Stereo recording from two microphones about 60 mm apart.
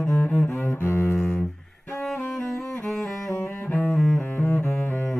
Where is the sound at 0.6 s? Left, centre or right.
Left.